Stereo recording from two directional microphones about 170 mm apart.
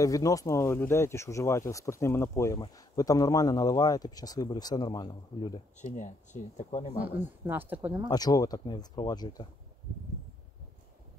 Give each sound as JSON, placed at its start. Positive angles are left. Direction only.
{"t": 0.0, "sound": "speech", "side_deg": 20}
{"t": 5.8, "sound": "speech", "side_deg": 45}
{"t": 7.0, "sound": "speech", "side_deg": -10}
{"t": 8.1, "sound": "speech", "side_deg": 20}